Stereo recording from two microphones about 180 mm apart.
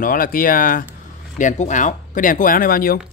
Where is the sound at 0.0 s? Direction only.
50° left (ahead or behind).